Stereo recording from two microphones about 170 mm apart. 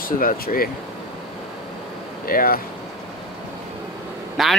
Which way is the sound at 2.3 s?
55° left (ahead or behind).